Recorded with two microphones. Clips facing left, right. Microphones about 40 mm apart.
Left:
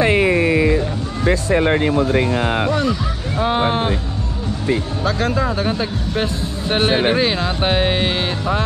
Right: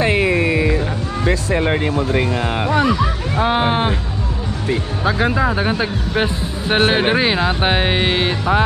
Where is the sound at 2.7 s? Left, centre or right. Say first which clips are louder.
Right 3 dB; right.